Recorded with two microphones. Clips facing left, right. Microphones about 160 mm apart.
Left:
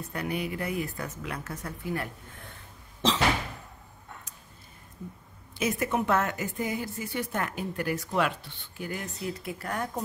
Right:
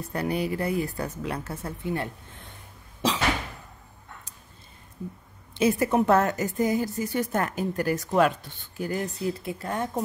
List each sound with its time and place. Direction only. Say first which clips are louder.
0.1 s a woman's voice: right 5 dB; 35° right (ahead or behind)
5.6 s a woman's voice: right 6 dB; 30° right (ahead or behind)